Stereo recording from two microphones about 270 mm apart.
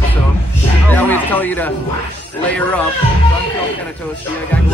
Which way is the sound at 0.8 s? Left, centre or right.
Centre.